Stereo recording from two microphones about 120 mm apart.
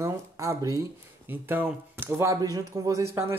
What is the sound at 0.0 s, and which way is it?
Speech, 25° right (ahead or behind).